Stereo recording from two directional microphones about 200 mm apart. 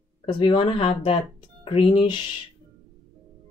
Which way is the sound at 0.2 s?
30° left (ahead or behind).